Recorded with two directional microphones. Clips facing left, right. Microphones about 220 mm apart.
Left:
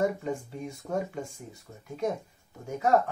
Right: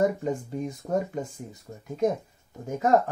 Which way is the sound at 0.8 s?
30° right (ahead or behind).